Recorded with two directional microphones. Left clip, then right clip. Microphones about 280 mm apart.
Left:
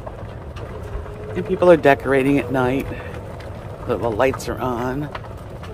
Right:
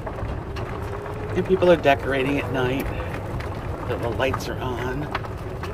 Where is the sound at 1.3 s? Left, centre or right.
Centre.